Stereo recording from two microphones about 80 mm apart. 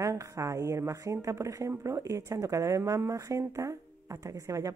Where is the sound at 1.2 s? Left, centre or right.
Right.